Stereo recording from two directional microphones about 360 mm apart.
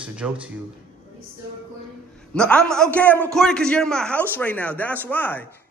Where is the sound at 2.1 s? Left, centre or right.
Centre.